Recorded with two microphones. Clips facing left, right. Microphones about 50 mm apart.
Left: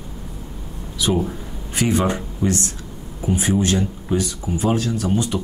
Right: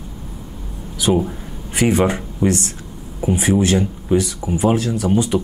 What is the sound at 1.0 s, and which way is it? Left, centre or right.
A man's voice, right.